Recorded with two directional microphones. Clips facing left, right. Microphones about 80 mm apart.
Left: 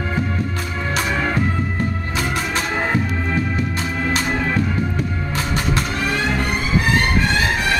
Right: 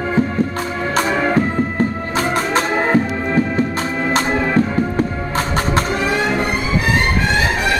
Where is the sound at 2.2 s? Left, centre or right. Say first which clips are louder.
Right 6 dB; right.